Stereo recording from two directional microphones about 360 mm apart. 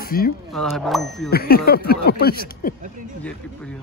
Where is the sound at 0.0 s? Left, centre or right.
Left.